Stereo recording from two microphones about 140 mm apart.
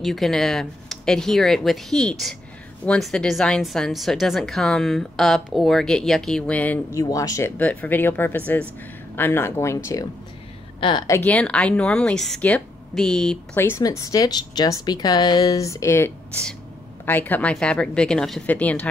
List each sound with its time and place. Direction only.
0.0 s a woman's voice: centre (ahead or behind); by 9.8 s 20° left (ahead or behind)
10.8 s a woman's voice: 35° left (ahead or behind)
11.1 s a woman's voice: 15° left (ahead or behind)
13.6 s a woman's voice: 20° left (ahead or behind)